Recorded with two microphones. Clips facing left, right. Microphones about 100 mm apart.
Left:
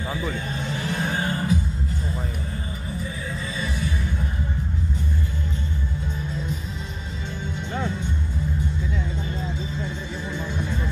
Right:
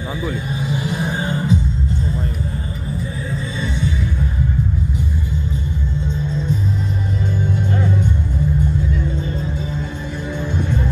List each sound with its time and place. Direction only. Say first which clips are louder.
0.2 s music: right 5 dB; 10° right (ahead or behind)